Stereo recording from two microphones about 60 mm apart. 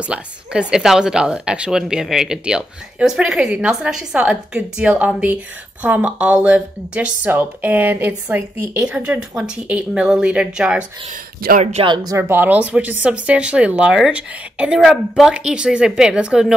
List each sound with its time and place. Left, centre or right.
0.0 s a woman's voice: centre
7.2 s a woman's voice: right
8.8 s a woman's voice: centre
12.2 s a woman's voice: right
12.4 s speech: right
14.8 s a woman's voice: centre
15.3 s a woman's voice: centre